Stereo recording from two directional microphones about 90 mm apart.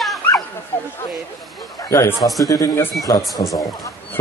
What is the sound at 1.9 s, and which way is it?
A man's voice, 30° left (ahead or behind).